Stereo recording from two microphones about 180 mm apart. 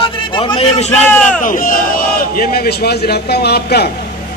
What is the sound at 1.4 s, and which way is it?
A man's voice, 50° left (ahead or behind).